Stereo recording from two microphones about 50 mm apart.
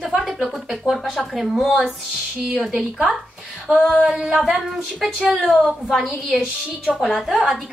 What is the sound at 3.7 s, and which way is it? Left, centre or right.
Speech, right.